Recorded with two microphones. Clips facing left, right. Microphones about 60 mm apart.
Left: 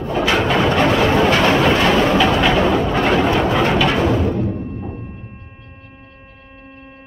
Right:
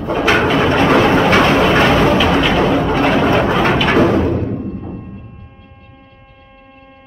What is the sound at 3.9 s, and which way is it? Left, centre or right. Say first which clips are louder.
Music: right 5 dB; right.